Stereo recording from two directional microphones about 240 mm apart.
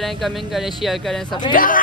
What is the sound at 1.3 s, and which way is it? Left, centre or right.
Speech, centre.